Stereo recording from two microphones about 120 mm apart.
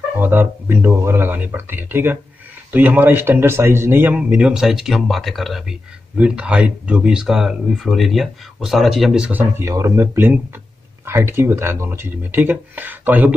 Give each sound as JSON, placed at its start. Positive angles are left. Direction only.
{"t": 0.2, "sound": "a man's voice", "side_deg": -20}